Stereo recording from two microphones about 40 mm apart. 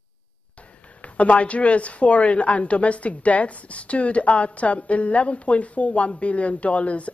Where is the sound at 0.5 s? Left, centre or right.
Left.